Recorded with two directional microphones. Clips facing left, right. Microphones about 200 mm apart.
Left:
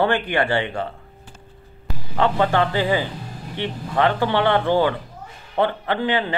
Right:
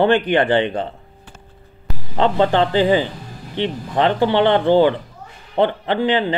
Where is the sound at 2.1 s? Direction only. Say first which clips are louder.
Right 3 dB; 25° right (ahead or behind).